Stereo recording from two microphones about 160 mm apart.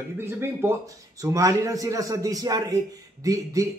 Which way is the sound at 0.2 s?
15° right (ahead or behind).